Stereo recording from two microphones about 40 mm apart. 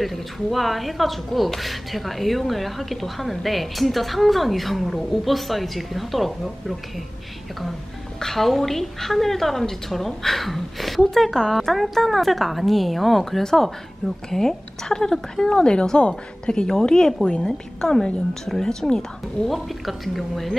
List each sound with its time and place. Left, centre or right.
0.0 s speech: centre
8.2 s a woman's voice: centre; by 16.6 s left
16.8 s a woman's voice: centre
19.8 s speech: centre